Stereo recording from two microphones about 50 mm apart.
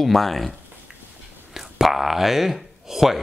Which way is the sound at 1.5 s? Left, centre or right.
Centre.